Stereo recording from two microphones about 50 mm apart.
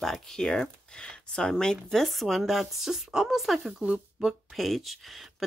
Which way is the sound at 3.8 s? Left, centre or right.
Right.